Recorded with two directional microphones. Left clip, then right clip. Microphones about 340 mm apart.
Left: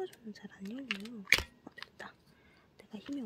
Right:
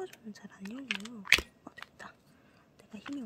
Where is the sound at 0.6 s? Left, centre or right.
Centre.